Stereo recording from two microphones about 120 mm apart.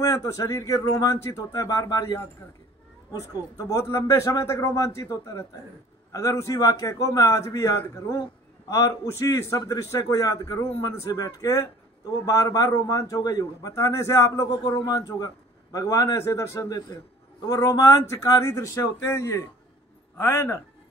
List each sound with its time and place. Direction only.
0.0 s a man's voice: 30° left (ahead or behind)
3.1 s a man's voice: 25° left (ahead or behind)